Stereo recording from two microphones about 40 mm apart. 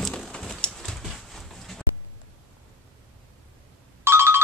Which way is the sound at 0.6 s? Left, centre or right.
Left.